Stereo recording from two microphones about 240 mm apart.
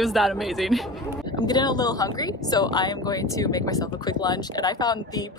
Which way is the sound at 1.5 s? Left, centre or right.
Centre.